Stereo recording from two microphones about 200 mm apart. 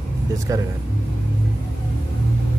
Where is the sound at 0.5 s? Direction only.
15° right (ahead or behind).